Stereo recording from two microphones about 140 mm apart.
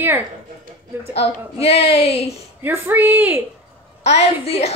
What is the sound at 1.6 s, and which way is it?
Speech, 45° left (ahead or behind).